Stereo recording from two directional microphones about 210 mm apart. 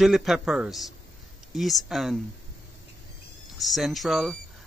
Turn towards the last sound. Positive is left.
turn(degrees=0)  # may be behind; listen again after turning